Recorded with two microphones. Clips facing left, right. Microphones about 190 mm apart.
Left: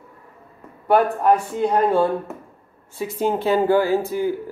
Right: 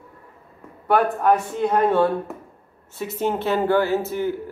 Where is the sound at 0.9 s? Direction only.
Centre (ahead or behind).